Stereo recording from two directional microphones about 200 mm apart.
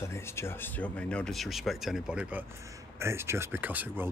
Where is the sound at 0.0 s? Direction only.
15° left (ahead or behind).